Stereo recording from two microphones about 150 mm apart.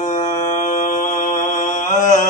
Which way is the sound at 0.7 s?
60° left (ahead or behind).